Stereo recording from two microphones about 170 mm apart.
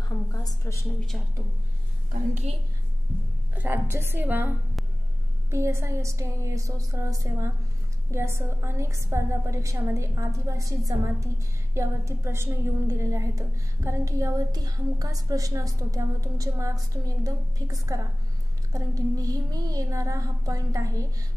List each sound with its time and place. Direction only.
0.3 s a woman's voice: 20° left (ahead or behind)
1.1 s speech: centre (ahead or behind)
3.5 s a woman's voice: 10° right (ahead or behind)